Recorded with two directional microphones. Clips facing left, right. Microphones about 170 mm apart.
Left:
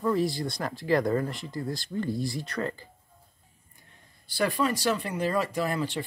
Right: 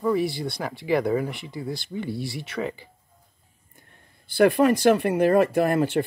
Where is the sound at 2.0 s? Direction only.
70° right (ahead or behind).